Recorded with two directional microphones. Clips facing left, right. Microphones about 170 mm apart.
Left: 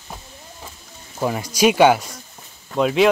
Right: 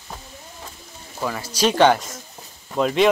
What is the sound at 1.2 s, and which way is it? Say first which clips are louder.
Speech: left 4 dB; 20° left (ahead or behind).